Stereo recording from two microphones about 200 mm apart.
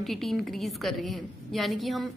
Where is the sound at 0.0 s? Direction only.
Centre (ahead or behind).